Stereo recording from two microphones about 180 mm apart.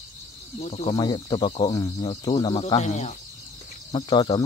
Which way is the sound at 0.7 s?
35° left (ahead or behind).